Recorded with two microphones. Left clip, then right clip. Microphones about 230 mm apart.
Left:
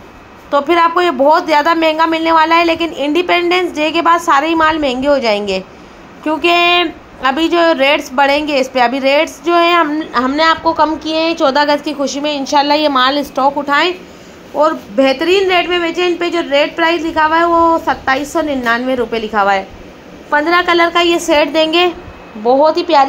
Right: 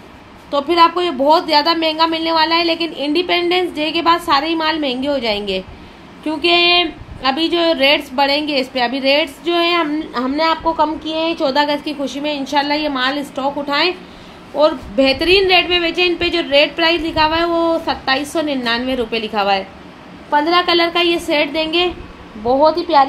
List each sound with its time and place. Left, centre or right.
0.5 s a woman's voice: centre
14.5 s a woman's voice: centre
16.8 s a woman's voice: left
17.1 s a woman's voice: centre
21.4 s a woman's voice: left